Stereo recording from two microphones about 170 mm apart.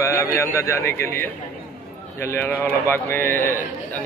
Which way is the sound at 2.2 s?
15° left (ahead or behind).